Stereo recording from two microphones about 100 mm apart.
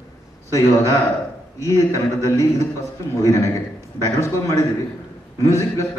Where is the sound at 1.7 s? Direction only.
30° left (ahead or behind).